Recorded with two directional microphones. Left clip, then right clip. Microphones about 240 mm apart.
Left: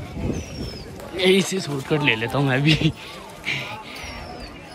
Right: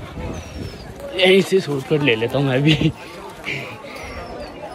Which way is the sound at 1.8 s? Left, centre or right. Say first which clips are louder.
Right 3 dB; centre.